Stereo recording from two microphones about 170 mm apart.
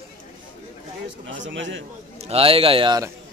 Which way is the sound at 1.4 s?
90° right.